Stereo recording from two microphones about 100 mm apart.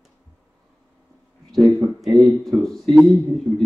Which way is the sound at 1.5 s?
35° right (ahead or behind).